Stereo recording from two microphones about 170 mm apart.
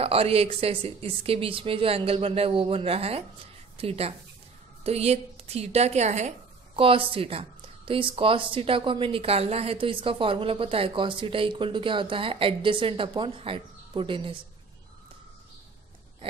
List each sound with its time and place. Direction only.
0.0 s a woman's voice: 35° right (ahead or behind)